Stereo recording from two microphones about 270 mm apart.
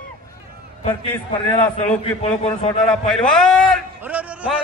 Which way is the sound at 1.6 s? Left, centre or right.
Left.